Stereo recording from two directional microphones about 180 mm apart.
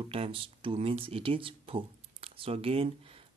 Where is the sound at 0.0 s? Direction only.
30° right (ahead or behind).